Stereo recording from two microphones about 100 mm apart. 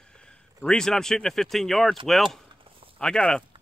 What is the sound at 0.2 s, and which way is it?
Speech, 5° left (ahead or behind).